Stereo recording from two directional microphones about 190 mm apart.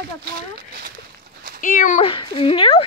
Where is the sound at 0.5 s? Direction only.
55° right (ahead or behind).